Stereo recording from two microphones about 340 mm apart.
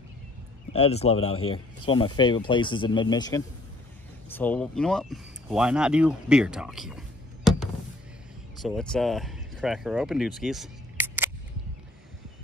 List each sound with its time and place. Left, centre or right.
0.7 s speech: centre
8.6 s speech: centre